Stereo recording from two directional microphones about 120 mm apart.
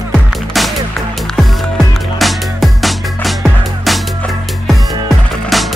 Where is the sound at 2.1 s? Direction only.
Centre (ahead or behind).